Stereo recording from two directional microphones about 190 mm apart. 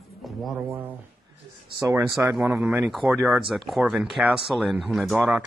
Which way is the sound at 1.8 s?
15° right (ahead or behind).